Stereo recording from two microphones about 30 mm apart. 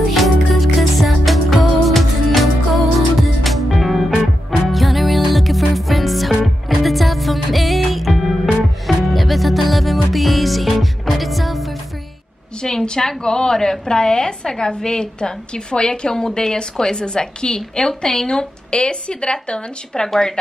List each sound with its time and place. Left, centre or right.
0.1 s music: centre
12.6 s a sound: centre
13.2 s a woman's voice: left
16.9 s speech: left
20.1 s speech: centre